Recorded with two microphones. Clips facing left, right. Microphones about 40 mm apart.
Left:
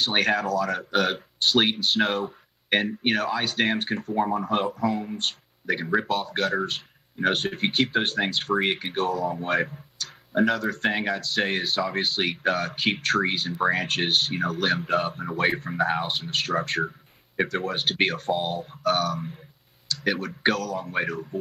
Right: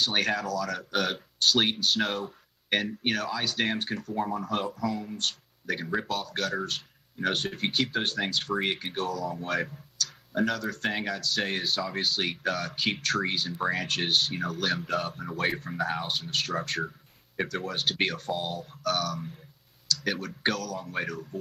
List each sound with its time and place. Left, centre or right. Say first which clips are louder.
0.0 s speech: left 4 dB; centre